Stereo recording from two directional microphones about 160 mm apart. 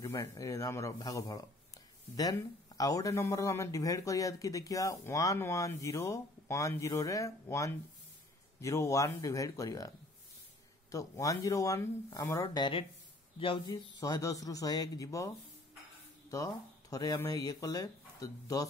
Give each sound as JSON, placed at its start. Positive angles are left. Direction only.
{"t": 0.0, "sound": "speech", "side_deg": 20}
{"t": 13.4, "sound": "speech", "side_deg": 30}
{"t": 16.9, "sound": "speech", "side_deg": 20}